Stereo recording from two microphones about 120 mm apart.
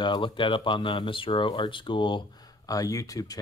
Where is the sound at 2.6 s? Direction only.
30° left (ahead or behind).